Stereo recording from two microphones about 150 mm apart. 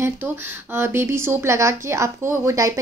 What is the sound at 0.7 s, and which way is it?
Speech, 15° right (ahead or behind).